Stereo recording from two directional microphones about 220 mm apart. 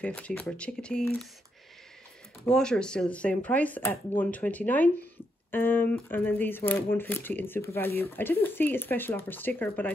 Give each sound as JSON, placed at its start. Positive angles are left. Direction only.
{"t": 0.0, "sound": "speech", "side_deg": 5}
{"t": 2.4, "sound": "speech", "side_deg": 5}